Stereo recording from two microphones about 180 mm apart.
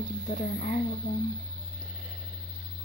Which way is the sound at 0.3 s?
50° left (ahead or behind).